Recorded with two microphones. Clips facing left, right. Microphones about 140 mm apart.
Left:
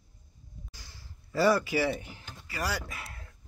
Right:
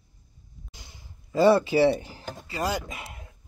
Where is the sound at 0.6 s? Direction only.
20° right (ahead or behind); by 2.4 s 35° right (ahead or behind).